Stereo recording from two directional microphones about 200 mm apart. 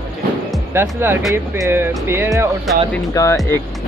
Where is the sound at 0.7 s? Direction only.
10° right (ahead or behind).